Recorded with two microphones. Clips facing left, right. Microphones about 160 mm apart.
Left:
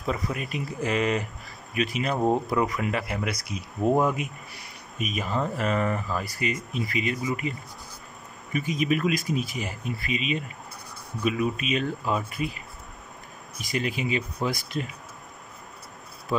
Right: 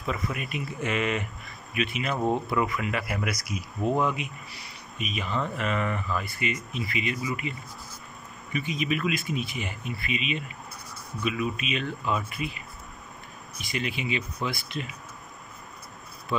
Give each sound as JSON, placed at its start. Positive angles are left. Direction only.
{"t": 0.0, "sound": "speech", "side_deg": 35}
{"t": 4.0, "sound": "speech", "side_deg": 45}
{"t": 8.5, "sound": "speech", "side_deg": 45}
{"t": 13.6, "sound": "speech", "side_deg": 40}
{"t": 16.3, "sound": "speech", "side_deg": 40}